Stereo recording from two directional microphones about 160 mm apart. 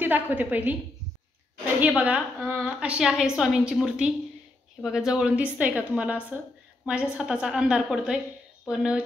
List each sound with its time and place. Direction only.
0.0 s a woman's voice: 10° right (ahead or behind)
1.8 s a woman's voice: 10° right (ahead or behind)